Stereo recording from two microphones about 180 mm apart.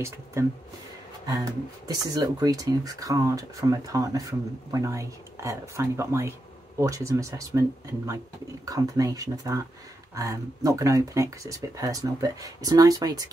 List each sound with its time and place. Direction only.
0.0 s speech: 15° right (ahead or behind)
8.6 s speech: 20° right (ahead or behind)